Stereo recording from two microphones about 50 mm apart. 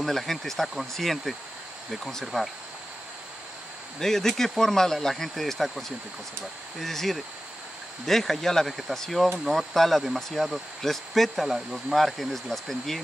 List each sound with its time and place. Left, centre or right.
0.0 s speech: centre
4.0 s speech: centre